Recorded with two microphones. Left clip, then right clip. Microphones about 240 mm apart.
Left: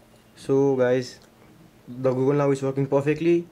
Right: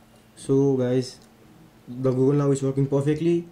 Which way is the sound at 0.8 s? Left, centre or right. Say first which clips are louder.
Left 3 dB; centre.